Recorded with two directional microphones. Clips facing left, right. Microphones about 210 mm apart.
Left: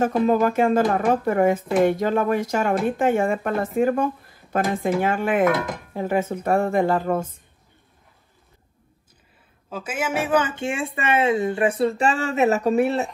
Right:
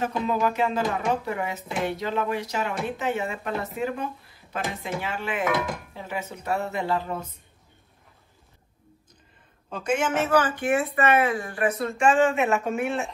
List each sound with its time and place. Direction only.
0.0 s speech: 45° left (ahead or behind)
9.7 s speech: 5° left (ahead or behind); by 13.1 s 35° left (ahead or behind)